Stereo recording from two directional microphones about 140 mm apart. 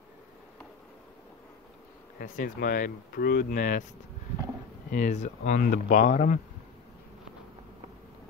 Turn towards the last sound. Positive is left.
turn(degrees=60)  # may be behind; listen again after turning